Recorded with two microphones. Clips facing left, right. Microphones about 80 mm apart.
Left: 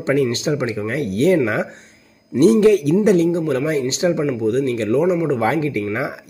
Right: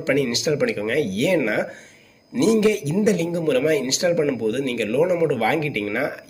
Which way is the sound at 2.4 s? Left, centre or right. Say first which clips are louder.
Left 5 dB; left.